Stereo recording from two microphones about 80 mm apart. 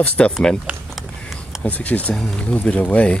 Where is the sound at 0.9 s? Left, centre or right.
Centre.